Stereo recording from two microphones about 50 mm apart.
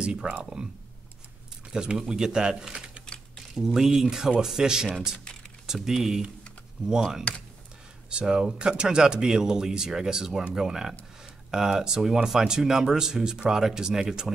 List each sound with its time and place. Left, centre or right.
0.0 s speech: centre
1.7 s speech: centre